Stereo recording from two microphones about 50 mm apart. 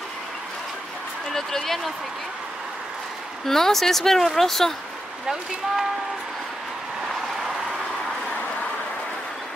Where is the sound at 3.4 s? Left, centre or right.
Centre.